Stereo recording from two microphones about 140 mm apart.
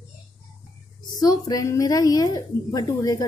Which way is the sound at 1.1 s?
25° left (ahead or behind).